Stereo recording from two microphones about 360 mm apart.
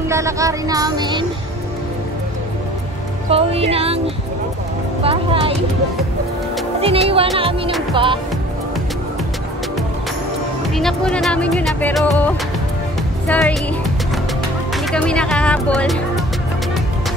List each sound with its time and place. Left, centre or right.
0.1 s music: centre
3.3 s music: centre
5.0 s speech: centre
6.8 s music: centre
7.9 s speech: centre
10.7 s speech: centre
13.3 s speech: centre
14.9 s speech: centre